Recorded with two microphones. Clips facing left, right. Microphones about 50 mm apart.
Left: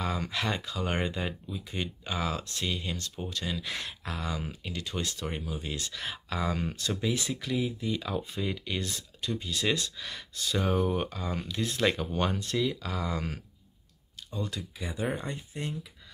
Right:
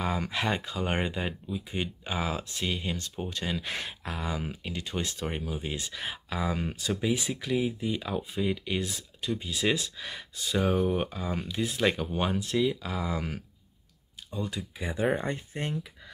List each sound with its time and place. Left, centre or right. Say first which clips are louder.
0.0 s speech: right 2 dB; right
3.3 s speech: right 1 dB; right
6.0 s speech: even; centre
8.2 s speech: right 4 dB; centre
15.1 s speech: right 4 dB; right